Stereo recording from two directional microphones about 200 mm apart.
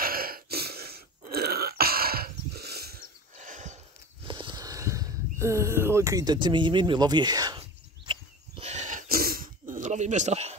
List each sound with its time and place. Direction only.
0.0 s burping: 45° right (ahead or behind)
3.3 s horse: 35° right (ahead or behind)
4.3 s speech: 25° right (ahead or behind)
8.1 s throat clearing: 30° right (ahead or behind)